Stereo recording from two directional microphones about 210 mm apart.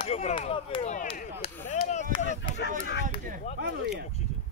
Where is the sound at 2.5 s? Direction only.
55° left (ahead or behind).